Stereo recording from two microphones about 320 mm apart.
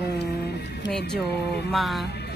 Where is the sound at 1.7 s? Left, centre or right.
Centre.